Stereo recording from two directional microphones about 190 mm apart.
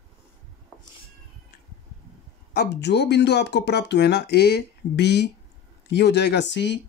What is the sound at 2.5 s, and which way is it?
Speech, 60° left (ahead or behind).